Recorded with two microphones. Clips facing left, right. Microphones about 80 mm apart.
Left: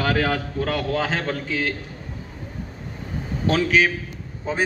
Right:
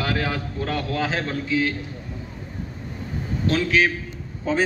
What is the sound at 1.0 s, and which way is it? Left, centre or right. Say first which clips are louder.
Speech: even; left.